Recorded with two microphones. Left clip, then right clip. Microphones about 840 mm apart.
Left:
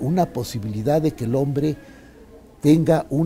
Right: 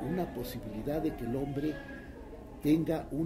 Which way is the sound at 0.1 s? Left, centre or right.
Left.